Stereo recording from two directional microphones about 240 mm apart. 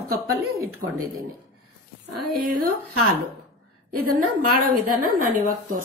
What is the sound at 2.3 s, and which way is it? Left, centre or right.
Speech, right.